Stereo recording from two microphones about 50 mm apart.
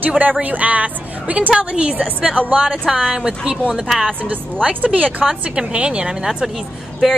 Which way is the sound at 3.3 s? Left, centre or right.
Centre.